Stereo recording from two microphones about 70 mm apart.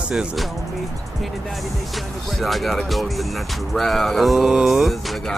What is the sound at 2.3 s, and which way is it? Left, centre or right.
Music, centre.